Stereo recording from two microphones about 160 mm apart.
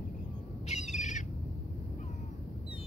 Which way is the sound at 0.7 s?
45° left (ahead or behind).